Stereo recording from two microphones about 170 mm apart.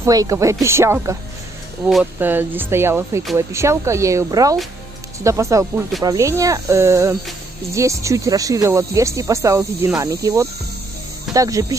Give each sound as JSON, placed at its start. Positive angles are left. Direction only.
{"t": 0.0, "sound": "speech", "side_deg": -20}
{"t": 2.1, "sound": "speech", "side_deg": -10}